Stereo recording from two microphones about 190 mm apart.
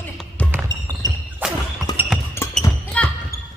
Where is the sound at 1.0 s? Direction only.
20° left (ahead or behind).